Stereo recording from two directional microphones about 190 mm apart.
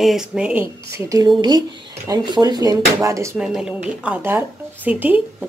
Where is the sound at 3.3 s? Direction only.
5° right (ahead or behind).